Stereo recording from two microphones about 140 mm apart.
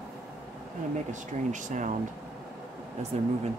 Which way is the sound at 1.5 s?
65° right (ahead or behind).